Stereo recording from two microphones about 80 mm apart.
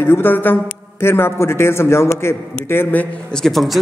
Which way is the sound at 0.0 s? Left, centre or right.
Left.